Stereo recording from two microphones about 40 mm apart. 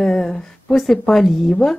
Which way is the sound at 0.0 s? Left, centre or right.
Centre.